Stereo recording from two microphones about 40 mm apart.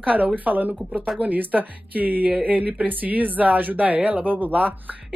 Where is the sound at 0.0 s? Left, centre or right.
Right.